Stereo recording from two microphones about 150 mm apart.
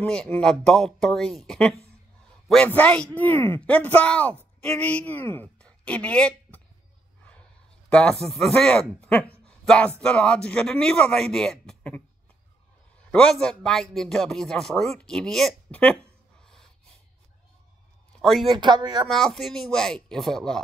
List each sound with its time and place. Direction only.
0.0 s a man's voice: 5° left (ahead or behind)
7.9 s a man's voice: 5° left (ahead or behind)
13.1 s a man's voice: 5° left (ahead or behind)
18.2 s speech: centre (ahead or behind)
18.6 s speech: 30° right (ahead or behind)
19.0 s a man's voice: centre (ahead or behind)